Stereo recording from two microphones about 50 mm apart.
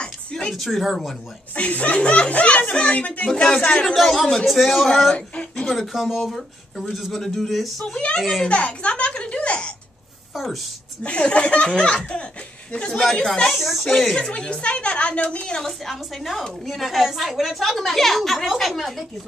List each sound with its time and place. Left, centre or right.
0.0 s a sound: centre
0.5 s a woman's voice: centre
1.5 s speech: left
3.3 s a woman's voice: centre
5.1 s speech: left
5.7 s a woman's voice: centre
8.5 s a sound: left
11.0 s speech: left
13.0 s speech: centre
13.5 s a woman's voice: centre
14.1 s speech: centre
15.5 s a woman's voice: centre